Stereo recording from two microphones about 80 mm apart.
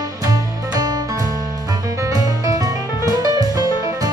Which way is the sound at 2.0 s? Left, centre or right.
Right.